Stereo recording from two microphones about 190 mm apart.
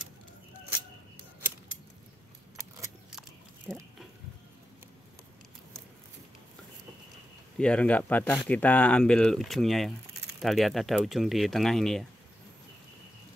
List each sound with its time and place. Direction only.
3.7 s speech: 5° left (ahead or behind)
7.5 s speech: 5° left (ahead or behind)